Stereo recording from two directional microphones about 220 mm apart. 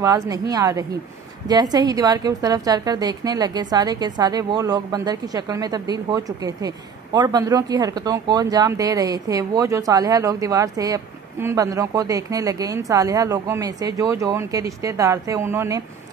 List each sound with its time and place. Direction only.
0.0 s speech: 15° right (ahead or behind)